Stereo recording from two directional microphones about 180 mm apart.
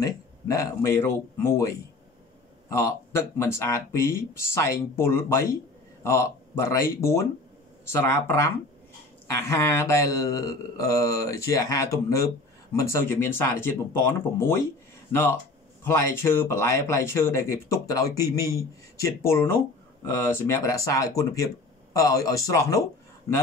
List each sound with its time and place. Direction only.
0.0 s speech: 20° left (ahead or behind)
2.7 s speech: 15° left (ahead or behind)
15.8 s speech: 15° left (ahead or behind)